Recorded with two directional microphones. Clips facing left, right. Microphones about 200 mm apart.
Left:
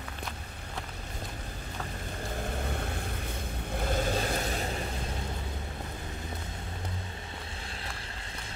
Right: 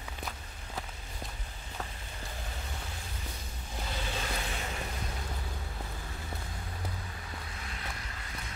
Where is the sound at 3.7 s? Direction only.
55° left (ahead or behind).